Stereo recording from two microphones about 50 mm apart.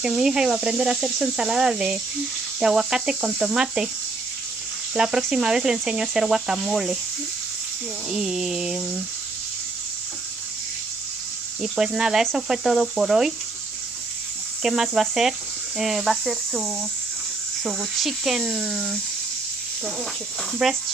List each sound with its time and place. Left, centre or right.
0.0 s speech: centre
4.9 s speech: centre
8.1 s speech: centre
11.6 s speech: centre
14.6 s speech: centre
17.9 s speech: centre
20.6 s speech: centre